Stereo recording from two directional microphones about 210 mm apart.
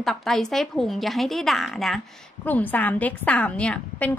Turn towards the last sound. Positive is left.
turn(degrees=5)  # may be behind; listen again after turning